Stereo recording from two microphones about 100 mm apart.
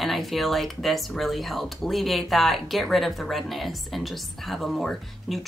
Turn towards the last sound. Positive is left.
turn(degrees=0)  # may be behind; listen again after turning